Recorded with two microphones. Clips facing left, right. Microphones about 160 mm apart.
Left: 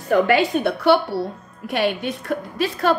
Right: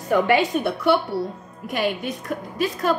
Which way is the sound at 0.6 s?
70° left (ahead or behind).